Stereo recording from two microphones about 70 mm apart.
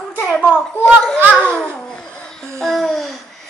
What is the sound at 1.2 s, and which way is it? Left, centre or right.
Speech, right.